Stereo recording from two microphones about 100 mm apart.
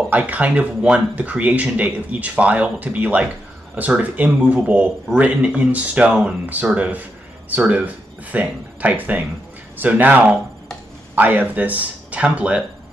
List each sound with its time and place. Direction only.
0.1 s speech: 15° right (ahead or behind)